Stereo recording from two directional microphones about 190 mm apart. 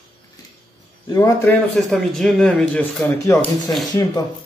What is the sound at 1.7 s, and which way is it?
Speech, centre (ahead or behind).